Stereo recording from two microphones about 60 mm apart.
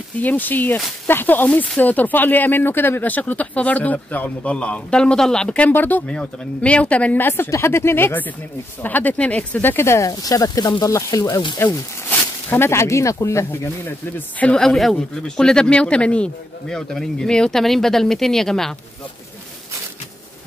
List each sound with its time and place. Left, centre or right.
0.2 s speech: left
5.7 s speech: left
6.0 s speech: centre
7.2 s speech: left
9.6 s speech: left
10.0 s speech: left
12.1 s speech: left
13.8 s speech: left
14.5 s speech: centre